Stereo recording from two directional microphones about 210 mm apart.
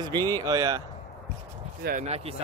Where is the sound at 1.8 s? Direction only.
35° right (ahead or behind).